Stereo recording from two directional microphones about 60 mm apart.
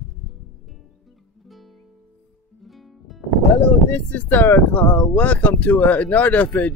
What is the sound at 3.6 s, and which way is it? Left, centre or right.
Speech, left.